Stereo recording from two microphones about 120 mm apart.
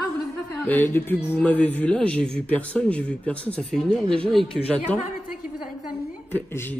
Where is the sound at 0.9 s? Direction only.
15° left (ahead or behind).